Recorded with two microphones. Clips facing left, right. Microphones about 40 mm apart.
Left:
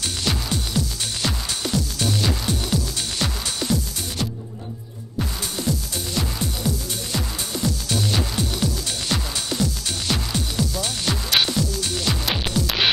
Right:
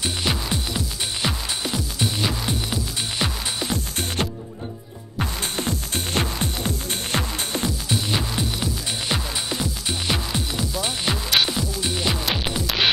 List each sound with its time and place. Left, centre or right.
0.0 s music: centre
4.2 s music: right
7.6 s music: centre
11.2 s music: centre
11.5 s music: centre
12.3 s music: centre
12.6 s throbbing: centre